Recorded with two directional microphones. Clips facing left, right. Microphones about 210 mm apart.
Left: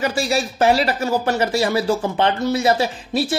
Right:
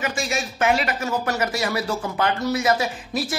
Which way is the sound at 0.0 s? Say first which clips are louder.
Left 6 dB; 35° left (ahead or behind).